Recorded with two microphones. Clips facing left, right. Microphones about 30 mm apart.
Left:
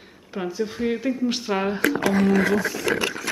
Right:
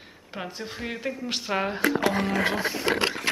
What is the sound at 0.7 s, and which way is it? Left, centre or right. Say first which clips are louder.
Speech: left 7 dB; centre.